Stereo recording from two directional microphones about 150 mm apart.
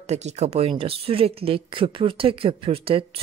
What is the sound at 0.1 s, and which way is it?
A woman's voice, 45° right (ahead or behind).